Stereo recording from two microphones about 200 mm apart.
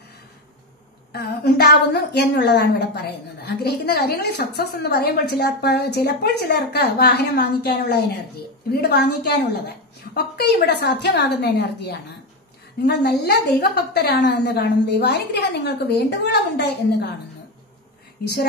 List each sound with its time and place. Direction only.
1.1 s a woman's voice: 55° left (ahead or behind)